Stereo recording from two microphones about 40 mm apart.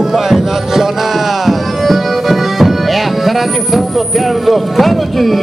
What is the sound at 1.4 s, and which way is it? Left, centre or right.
Music, centre.